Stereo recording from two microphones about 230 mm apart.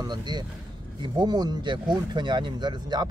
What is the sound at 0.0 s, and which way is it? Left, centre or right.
Speech, centre.